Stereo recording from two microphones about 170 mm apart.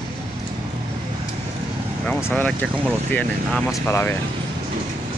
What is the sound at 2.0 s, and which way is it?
Speech, 5° left (ahead or behind).